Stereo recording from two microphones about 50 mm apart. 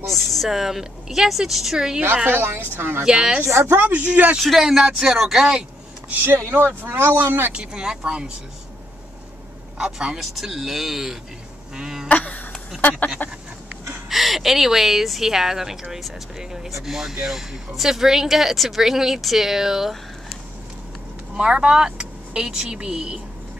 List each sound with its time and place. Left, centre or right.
0.1 s speech: centre
2.2 s speech: right
3.0 s speech: centre
3.7 s speech: right
4.4 s speech: centre
6.3 s speech: right
7.5 s speech: centre
9.8 s speech: centre
11.7 s a sound: centre
12.1 s a sound: left
12.8 s speech: left
14.0 s speech: centre
21.4 s speech: centre